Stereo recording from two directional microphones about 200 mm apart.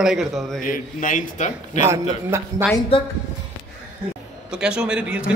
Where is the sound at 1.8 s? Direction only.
15° right (ahead or behind).